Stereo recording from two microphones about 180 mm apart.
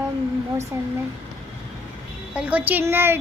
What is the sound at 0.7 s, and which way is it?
Speech, 15° right (ahead or behind).